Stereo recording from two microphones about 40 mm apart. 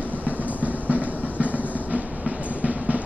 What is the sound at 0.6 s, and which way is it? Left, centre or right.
Train, right.